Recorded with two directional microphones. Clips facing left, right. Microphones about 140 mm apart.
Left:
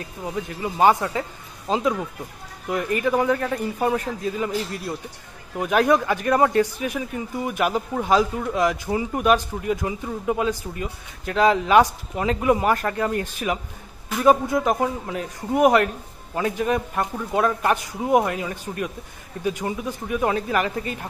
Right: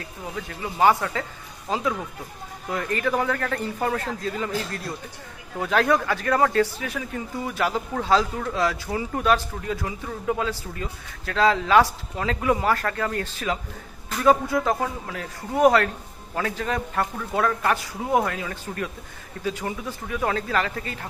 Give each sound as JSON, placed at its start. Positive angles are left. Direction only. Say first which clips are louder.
{"t": 0.4, "sound": "speech", "louder": "left 2 dB", "side_deg": 20}